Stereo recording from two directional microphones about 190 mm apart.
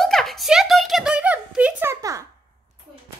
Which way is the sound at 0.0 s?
Centre (ahead or behind).